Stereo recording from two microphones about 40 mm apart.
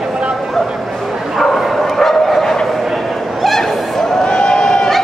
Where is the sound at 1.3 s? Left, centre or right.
Centre.